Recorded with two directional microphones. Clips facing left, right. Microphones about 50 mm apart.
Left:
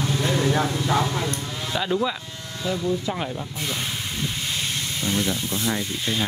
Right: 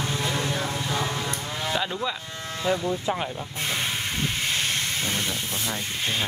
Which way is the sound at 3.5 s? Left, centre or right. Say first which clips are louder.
Even; right.